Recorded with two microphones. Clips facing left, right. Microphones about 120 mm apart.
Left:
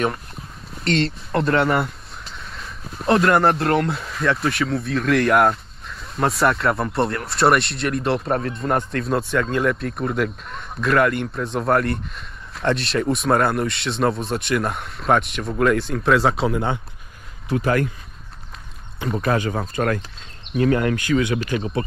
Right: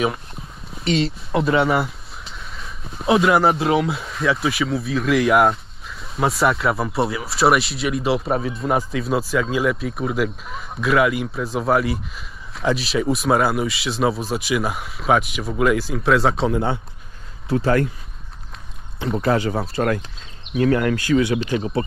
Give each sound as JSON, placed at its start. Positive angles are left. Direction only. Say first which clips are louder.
{"t": 0.7, "sound": "speech", "louder": "even", "side_deg": 0}
{"t": 18.9, "sound": "speech", "louder": "right 2 dB", "side_deg": -25}
{"t": 20.5, "sound": "speech", "louder": "right 1 dB", "side_deg": 35}
{"t": 21.5, "sound": "speech", "louder": "right 2 dB", "side_deg": -35}